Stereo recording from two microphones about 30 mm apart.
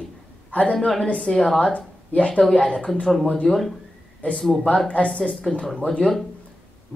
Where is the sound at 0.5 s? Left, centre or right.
Left.